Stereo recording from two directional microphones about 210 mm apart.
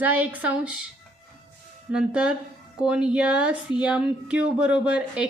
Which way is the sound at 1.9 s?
5° right (ahead or behind).